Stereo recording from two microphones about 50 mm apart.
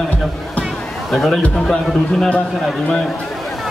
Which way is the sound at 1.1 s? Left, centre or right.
Centre.